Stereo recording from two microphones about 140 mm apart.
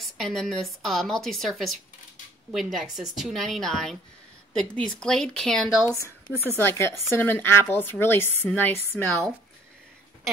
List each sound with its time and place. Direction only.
0.0 s a woman's voice: centre (ahead or behind)
6.4 s speech: 15° left (ahead or behind)